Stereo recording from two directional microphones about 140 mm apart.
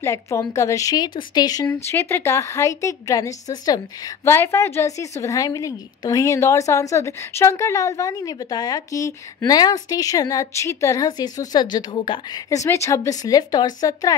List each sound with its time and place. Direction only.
0.0 s a woman's voice: 20° left (ahead or behind)
1.7 s a woman's voice: 15° left (ahead or behind); by 12.2 s 35° left (ahead or behind)
12.4 s a woman's voice: 20° left (ahead or behind)